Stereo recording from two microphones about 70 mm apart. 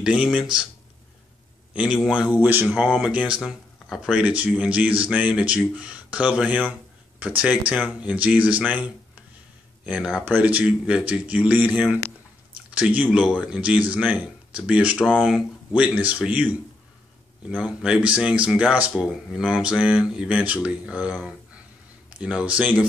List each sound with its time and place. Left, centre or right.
0.0 s speech: centre
1.7 s a man's voice: centre
3.4 s speech: centre
4.1 s speech: centre
20.3 s speech: centre